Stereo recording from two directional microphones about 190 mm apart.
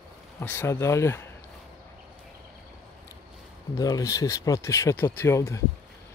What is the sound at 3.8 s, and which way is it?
Speech, 15° left (ahead or behind).